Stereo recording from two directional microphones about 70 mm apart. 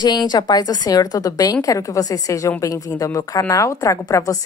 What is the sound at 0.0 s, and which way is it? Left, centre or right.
A woman's voice, left.